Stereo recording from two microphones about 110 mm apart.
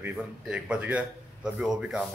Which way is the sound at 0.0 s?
10° right (ahead or behind).